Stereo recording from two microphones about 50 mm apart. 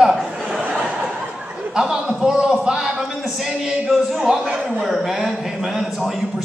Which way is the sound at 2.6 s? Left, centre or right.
Centre.